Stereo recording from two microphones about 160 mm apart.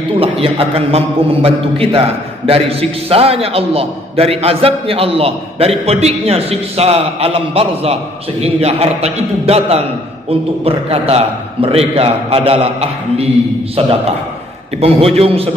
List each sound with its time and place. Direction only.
0.2 s a man's voice: 35° right (ahead or behind)